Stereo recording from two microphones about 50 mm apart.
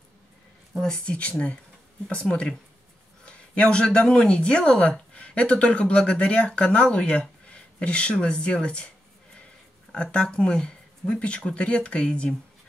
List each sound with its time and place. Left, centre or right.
0.8 s speech: centre